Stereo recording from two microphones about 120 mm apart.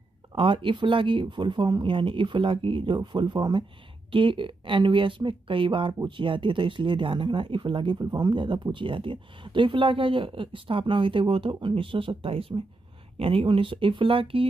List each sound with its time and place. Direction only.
0.3 s speech: 45° right (ahead or behind)